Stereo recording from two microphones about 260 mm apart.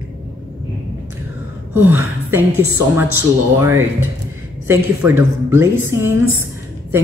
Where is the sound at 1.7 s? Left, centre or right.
Centre.